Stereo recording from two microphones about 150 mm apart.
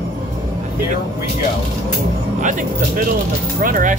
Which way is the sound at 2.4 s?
60° right (ahead or behind).